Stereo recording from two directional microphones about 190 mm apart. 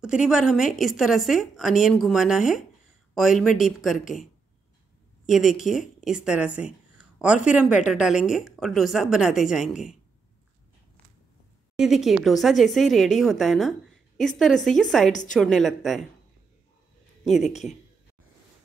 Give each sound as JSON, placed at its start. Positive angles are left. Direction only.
{"t": 0.0, "sound": "a woman's voice", "side_deg": -5}
{"t": 5.2, "sound": "a woman's voice", "side_deg": 0}
{"t": 11.8, "sound": "a woman's voice", "side_deg": 0}
{"t": 17.2, "sound": "speech", "side_deg": 0}